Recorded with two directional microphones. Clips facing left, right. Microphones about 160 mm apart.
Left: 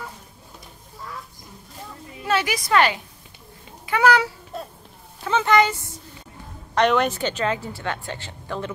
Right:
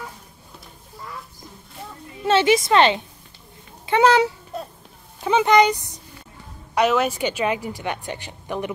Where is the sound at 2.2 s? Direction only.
25° right (ahead or behind).